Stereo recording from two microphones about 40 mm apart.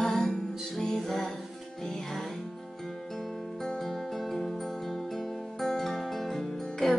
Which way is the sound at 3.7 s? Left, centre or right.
Centre.